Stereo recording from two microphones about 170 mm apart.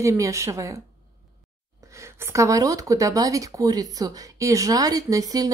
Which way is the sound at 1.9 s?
15° right (ahead or behind).